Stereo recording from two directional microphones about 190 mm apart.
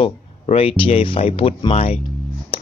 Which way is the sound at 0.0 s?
30° left (ahead or behind).